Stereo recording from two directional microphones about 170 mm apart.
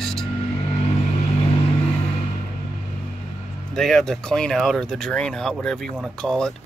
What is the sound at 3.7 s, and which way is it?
Speech, centre (ahead or behind).